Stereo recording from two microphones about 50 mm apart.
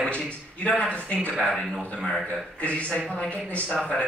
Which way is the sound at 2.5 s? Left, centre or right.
Left.